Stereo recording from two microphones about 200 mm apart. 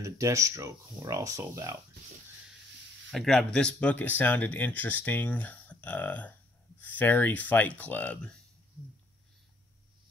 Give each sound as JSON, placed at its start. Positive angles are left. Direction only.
{"t": 0.0, "sound": "speech", "side_deg": -15}
{"t": 3.1, "sound": "speech", "side_deg": 0}